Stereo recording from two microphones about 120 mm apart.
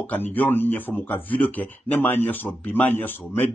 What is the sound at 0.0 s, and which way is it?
Speech, 15° left (ahead or behind).